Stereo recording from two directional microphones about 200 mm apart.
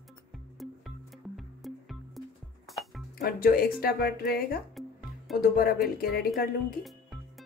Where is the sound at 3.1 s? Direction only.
45° left (ahead or behind).